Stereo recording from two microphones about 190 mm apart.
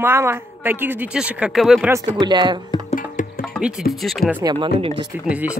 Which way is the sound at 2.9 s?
45° left (ahead or behind).